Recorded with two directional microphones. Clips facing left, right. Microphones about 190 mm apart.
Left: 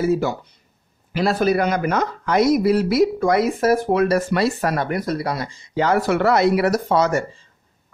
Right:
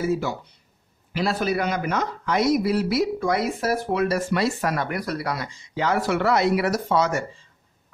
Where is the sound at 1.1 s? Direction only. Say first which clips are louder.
Left 5 dB; 45° left (ahead or behind).